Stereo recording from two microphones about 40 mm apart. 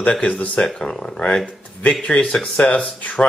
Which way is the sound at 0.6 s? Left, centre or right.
Left.